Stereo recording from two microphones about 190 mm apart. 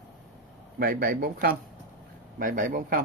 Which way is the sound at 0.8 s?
50° right (ahead or behind).